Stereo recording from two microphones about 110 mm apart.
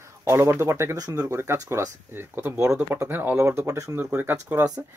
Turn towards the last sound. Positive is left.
turn(degrees=-20)  # may be behind; listen again after turning